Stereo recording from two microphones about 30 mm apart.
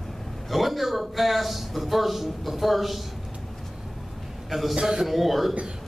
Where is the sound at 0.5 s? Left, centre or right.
Centre.